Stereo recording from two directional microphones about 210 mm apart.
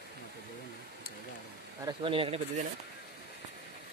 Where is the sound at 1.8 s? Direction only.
20° right (ahead or behind).